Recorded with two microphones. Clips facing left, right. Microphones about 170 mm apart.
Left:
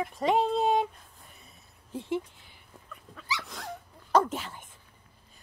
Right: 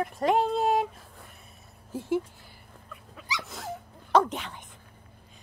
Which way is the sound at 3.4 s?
Centre (ahead or behind).